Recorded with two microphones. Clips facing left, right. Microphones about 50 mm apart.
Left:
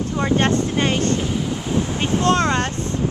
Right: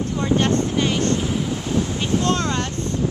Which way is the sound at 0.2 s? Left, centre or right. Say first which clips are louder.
Left 1 dB; left.